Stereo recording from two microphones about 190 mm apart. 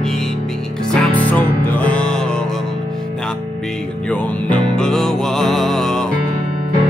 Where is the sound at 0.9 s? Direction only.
10° left (ahead or behind).